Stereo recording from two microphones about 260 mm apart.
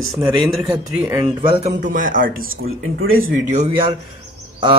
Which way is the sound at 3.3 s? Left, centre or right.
Right.